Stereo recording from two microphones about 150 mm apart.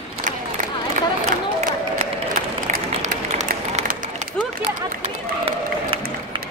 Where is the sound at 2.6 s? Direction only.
55° right (ahead or behind).